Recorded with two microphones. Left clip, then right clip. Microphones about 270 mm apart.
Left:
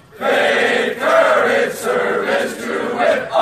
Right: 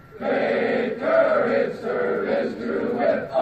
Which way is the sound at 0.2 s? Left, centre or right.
Left.